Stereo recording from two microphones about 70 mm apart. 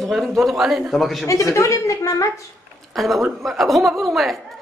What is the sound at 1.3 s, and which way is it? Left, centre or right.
Speech, left.